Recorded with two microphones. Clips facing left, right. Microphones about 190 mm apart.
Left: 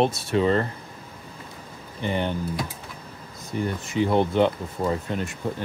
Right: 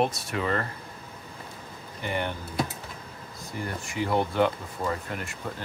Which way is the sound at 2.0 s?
20° left (ahead or behind).